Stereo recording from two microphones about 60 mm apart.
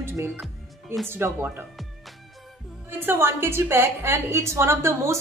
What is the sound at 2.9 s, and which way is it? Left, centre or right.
A woman's voice, right.